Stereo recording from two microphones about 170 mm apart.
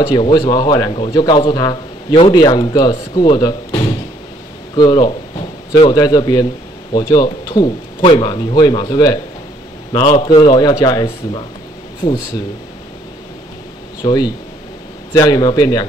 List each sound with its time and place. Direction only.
0.0 s speech: 25° left (ahead or behind)
14.0 s speech: 25° left (ahead or behind)